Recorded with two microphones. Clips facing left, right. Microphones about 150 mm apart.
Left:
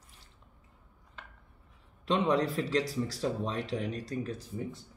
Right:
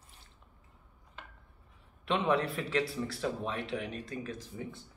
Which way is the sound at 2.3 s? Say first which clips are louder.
Left 2 dB; 35° left (ahead or behind).